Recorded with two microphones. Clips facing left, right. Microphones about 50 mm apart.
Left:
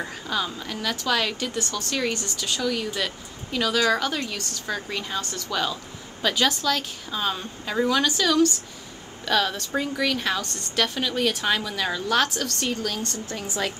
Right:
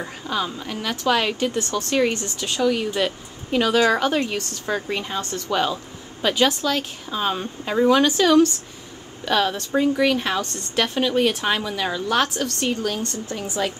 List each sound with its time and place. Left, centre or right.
0.3 s speech: centre